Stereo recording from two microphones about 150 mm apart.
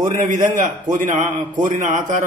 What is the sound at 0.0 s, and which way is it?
A man's voice, 60° right (ahead or behind).